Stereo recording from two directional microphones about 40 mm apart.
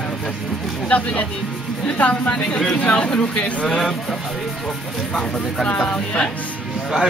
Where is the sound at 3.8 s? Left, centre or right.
Centre.